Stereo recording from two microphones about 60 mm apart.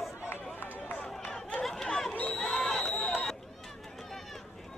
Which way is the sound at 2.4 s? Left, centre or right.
Centre.